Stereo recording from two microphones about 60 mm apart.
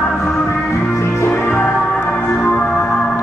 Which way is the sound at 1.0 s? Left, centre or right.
Left.